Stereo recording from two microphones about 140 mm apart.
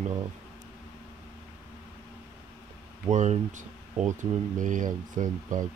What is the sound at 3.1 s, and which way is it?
Speech, 60° right (ahead or behind).